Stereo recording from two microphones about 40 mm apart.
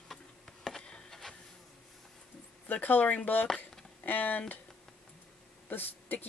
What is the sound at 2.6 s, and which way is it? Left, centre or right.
Speech, left.